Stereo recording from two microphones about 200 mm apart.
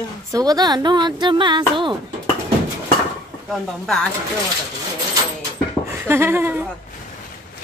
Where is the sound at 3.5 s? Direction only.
Centre (ahead or behind).